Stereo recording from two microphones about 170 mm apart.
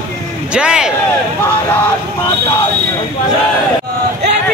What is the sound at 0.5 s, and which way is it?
Speech, 5° right (ahead or behind).